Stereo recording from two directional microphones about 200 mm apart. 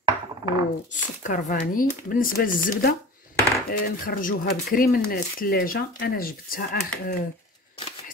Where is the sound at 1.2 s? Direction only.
40° left (ahead or behind).